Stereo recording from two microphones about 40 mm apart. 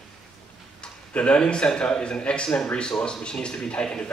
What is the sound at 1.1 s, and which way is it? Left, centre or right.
Speech, left.